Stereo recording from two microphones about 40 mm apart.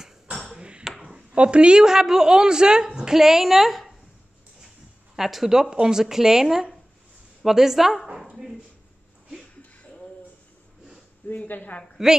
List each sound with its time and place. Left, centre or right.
0.6 s ping: right
0.8 s a sound: centre
1.3 s a woman's voice: right; by 3.9 s centre
5.1 s a woman's voice: centre
11.2 s speech: left